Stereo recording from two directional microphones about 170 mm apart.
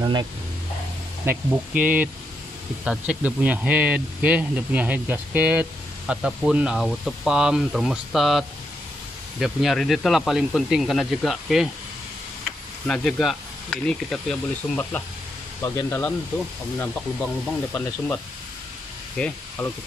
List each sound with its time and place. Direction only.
0.0 s speech: 25° right (ahead or behind)
1.5 s speech: 10° right (ahead or behind)
12.8 s speech: 5° left (ahead or behind)